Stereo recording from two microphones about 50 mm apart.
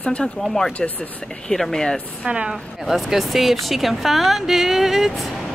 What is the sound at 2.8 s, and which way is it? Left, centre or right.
Speech, centre.